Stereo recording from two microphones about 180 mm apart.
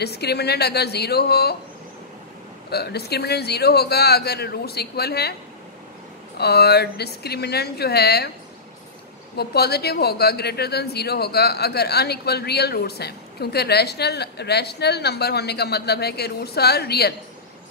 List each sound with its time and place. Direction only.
0.0 s speech: 65° left (ahead or behind)
2.7 s speech: 65° left (ahead or behind)
6.3 s speech: 65° left (ahead or behind)
9.4 s speech: 60° left (ahead or behind)